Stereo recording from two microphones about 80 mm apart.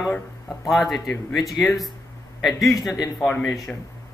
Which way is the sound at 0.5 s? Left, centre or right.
Centre.